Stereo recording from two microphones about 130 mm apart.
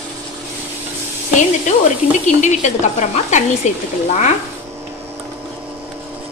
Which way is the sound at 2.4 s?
65° left (ahead or behind).